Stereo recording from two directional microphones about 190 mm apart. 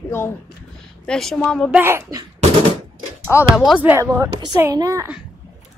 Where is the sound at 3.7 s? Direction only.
10° right (ahead or behind).